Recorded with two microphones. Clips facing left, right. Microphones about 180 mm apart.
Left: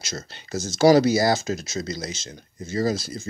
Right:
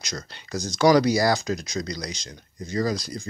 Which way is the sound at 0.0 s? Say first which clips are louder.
Left 1 dB; 25° left (ahead or behind).